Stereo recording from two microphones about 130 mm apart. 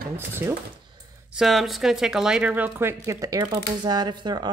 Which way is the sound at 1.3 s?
Centre (ahead or behind).